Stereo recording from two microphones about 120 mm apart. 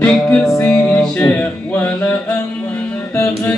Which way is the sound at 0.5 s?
20° left (ahead or behind).